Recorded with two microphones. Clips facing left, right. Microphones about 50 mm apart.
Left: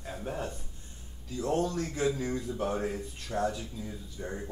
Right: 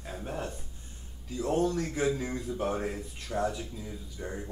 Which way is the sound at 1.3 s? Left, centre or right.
Centre.